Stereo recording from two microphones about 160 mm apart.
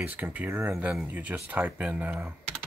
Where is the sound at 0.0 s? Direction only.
10° right (ahead or behind).